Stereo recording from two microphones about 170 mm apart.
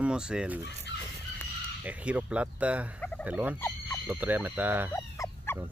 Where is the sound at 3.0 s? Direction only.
5° left (ahead or behind).